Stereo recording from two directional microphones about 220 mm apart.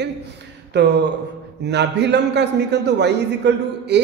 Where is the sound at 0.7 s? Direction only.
50° right (ahead or behind).